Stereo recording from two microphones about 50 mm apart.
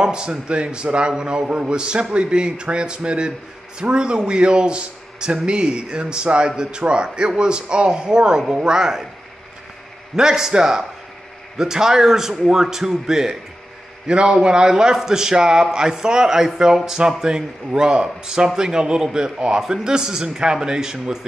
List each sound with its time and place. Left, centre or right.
0.0 s a man's voice: centre
10.1 s a man's voice: centre